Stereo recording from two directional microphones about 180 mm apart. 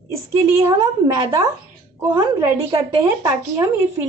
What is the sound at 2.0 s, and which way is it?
A woman's voice, 15° right (ahead or behind).